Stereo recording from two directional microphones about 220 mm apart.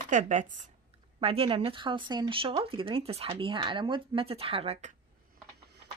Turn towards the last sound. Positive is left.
turn(degrees=-25)  # may be behind; listen again after turning